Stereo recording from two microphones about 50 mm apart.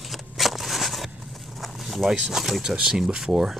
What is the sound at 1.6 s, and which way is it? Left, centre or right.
Speech, centre.